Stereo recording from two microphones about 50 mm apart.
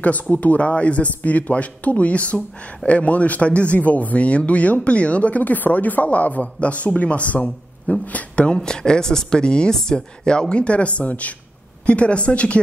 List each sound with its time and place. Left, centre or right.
0.0 s speech: left
8.6 s speech: centre